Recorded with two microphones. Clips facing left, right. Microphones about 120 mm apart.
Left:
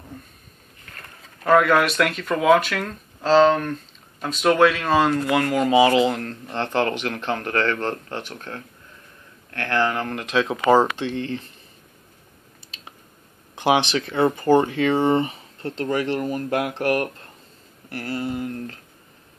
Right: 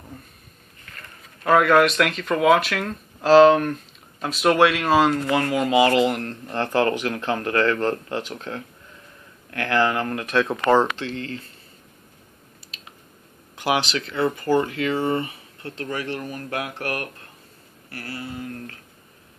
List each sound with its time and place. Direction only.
1.4 s speech: centre (ahead or behind)
13.6 s speech: 25° left (ahead or behind)